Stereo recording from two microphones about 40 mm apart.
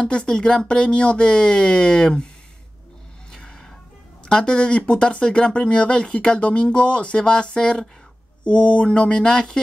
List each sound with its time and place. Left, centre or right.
0.0 s speech: left
0.3 s speech: centre
3.3 s a sound: centre
4.2 s speech: left
8.5 s speech: left